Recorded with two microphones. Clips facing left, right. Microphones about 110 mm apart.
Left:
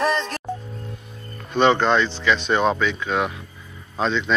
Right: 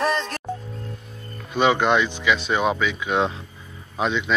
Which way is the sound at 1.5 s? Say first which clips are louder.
Left 1 dB; 10° right (ahead or behind).